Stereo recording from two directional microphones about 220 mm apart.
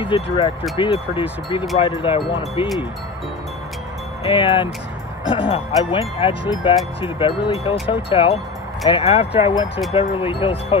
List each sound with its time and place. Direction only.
0.0 s speech: 25° left (ahead or behind)
4.3 s speech: 20° left (ahead or behind)